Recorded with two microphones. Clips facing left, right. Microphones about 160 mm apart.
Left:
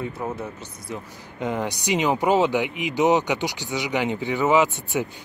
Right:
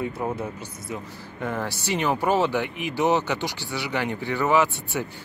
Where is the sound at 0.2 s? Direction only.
10° right (ahead or behind).